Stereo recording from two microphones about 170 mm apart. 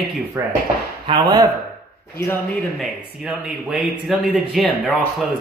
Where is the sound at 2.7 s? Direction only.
Centre (ahead or behind).